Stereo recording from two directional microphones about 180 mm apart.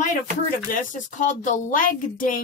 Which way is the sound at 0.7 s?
45° left (ahead or behind).